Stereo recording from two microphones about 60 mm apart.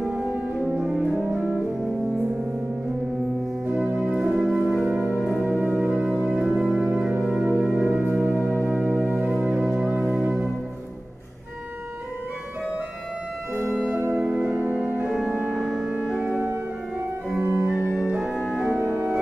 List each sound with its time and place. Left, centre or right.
0.7 s music: centre
3.6 s organ: right
4.1 s music: centre
5.6 s organ: right
6.1 s music: centre
7.0 s music: right
8.6 s organ: right
9.5 s music: centre
13.9 s music: right
14.2 s music: right
15.0 s music: centre
16.2 s music: right
17.6 s organ: right
18.5 s music: centre